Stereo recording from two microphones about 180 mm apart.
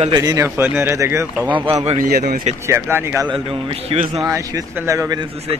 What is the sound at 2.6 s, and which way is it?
Speech, 15° right (ahead or behind).